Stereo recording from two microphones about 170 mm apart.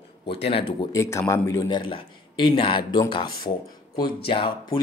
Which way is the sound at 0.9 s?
15° left (ahead or behind).